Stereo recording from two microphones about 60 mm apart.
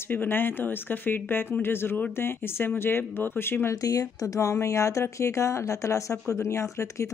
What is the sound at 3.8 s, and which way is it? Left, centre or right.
Speech, left.